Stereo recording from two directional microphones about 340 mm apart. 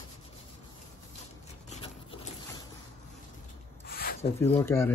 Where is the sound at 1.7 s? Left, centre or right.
Centre.